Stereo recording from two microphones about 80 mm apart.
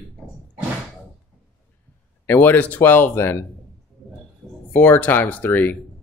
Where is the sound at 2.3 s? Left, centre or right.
Left.